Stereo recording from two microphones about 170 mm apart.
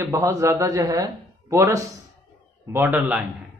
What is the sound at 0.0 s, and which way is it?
A man's voice, 15° right (ahead or behind).